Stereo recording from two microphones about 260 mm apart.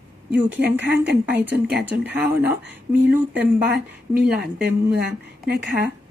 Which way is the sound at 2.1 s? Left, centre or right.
Centre.